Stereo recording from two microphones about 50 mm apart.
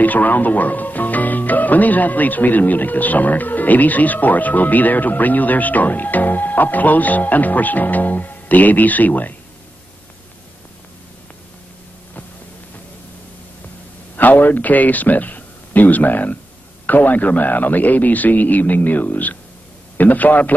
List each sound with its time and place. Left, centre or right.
0.0 s speech: left
14.1 s a man's voice: left